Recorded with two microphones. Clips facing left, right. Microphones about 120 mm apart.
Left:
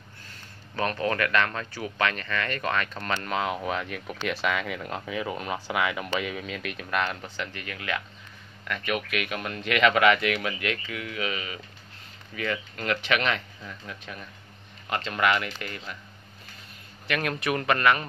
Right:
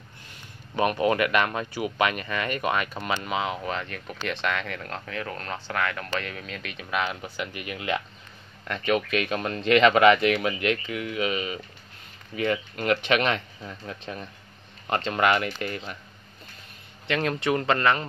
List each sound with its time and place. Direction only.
0.3 s speech: 15° right (ahead or behind)
17.1 s speech: 25° right (ahead or behind)